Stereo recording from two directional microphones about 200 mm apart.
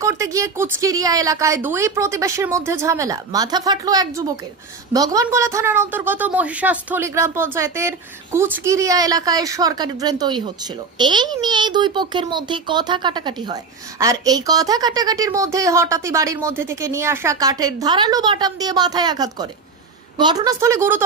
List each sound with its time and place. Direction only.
0.0 s a woman's voice: 15° right (ahead or behind)